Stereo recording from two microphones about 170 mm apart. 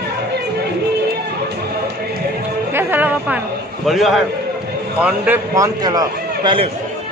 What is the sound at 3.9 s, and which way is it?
Speech, centre (ahead or behind).